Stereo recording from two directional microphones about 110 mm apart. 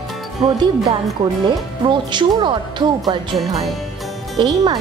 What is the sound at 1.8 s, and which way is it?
Speech, 45° right (ahead or behind).